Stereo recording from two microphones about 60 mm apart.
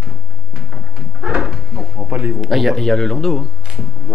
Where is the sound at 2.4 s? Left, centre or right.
Centre.